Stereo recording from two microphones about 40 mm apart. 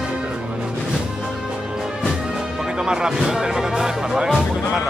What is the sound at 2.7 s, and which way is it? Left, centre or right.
Speech, centre.